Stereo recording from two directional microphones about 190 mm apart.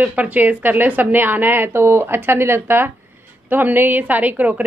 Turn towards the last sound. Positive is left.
turn(degrees=-10)  # may be behind; listen again after turning